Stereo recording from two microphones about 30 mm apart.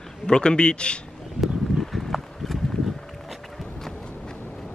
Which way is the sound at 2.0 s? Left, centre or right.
Centre.